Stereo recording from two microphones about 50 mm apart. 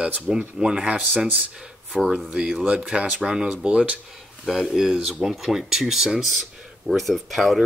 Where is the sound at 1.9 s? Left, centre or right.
Centre; by 3.9 s right.